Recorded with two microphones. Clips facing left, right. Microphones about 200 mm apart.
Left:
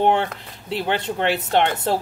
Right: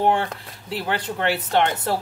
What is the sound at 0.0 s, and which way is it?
Speech, 25° left (ahead or behind).